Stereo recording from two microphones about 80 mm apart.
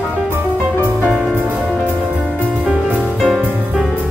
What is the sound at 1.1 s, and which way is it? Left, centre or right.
Music, centre.